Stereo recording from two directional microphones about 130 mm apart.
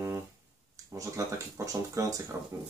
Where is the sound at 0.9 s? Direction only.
25° right (ahead or behind).